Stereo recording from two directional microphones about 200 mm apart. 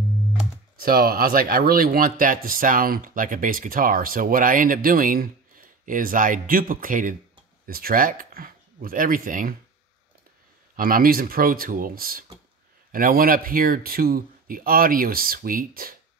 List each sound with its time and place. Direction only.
0.7 s speech: 50° right (ahead or behind)
10.8 s speech: 45° right (ahead or behind)